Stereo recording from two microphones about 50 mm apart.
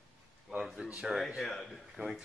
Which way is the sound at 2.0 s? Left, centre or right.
Right.